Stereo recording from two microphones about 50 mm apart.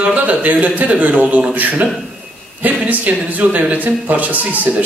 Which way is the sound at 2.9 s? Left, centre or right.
Right.